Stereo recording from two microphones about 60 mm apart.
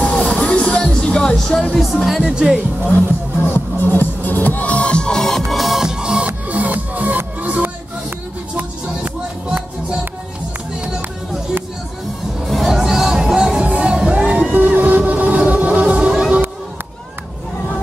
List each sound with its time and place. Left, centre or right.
0.0 s music: centre
2.0 s speech: centre
2.9 s music: left; by 5.4 s centre
5.5 s music: centre
6.2 s music: right
12.4 s music: centre
14.5 s vehicle: right
15.5 s music: right